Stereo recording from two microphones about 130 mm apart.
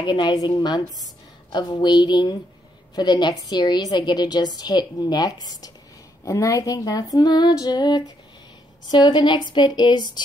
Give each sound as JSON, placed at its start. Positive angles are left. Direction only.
{"t": 0.0, "sound": "a woman's voice", "side_deg": 35}
{"t": 6.2, "sound": "female singing", "side_deg": 25}
{"t": 8.8, "sound": "a woman's voice", "side_deg": 35}